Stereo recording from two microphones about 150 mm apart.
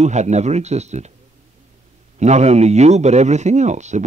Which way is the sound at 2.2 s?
50° right (ahead or behind).